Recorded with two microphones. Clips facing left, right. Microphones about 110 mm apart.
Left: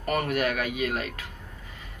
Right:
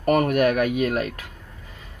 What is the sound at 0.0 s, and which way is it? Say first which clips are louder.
Speech: right 8 dB; 50° right (ahead or behind).